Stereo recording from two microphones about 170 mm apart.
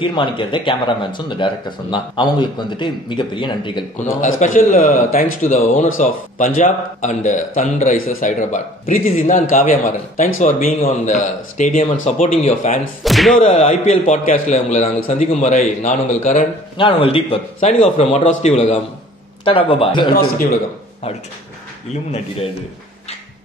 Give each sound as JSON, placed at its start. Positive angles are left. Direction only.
{"t": 0.0, "sound": "speech", "side_deg": 30}
{"t": 4.2, "sound": "speech", "side_deg": 50}
{"t": 9.0, "sound": "a man's voice", "side_deg": 35}
{"t": 9.3, "sound": "speech", "side_deg": 55}
{"t": 10.8, "sound": "a man's voice", "side_deg": 40}
{"t": 13.0, "sound": "speech", "side_deg": 0}
{"t": 13.4, "sound": "speech", "side_deg": 45}
{"t": 16.7, "sound": "a man's voice", "side_deg": 30}